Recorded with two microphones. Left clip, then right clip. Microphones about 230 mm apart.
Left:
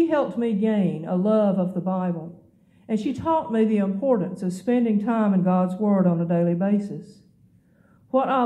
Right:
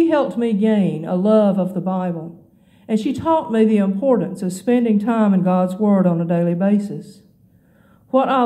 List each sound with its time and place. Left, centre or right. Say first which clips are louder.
0.0 s speech: right 5 dB; right